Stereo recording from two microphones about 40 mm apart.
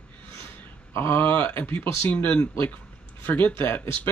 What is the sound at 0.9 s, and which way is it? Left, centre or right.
Speech, left.